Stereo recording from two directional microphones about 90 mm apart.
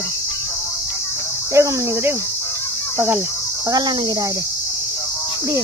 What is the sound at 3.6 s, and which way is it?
Speech, 50° right (ahead or behind).